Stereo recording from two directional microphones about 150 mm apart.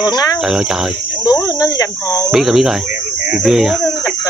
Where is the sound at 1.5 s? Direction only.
25° left (ahead or behind).